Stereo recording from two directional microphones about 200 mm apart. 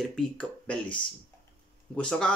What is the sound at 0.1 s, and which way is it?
Speech, 5° left (ahead or behind).